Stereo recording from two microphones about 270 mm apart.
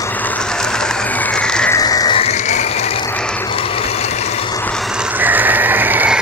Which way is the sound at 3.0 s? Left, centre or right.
Centre.